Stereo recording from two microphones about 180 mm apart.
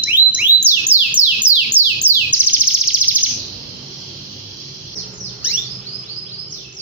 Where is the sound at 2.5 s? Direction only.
5° right (ahead or behind).